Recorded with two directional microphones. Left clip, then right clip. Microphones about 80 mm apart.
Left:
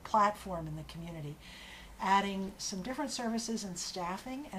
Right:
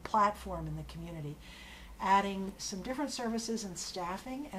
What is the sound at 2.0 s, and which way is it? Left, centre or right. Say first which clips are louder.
Speech: right 1 dB; centre.